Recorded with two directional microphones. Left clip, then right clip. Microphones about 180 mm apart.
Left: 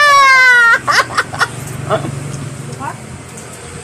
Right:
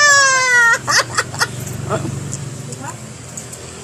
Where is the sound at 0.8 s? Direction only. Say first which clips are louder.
Left 4 dB; 15° right (ahead or behind).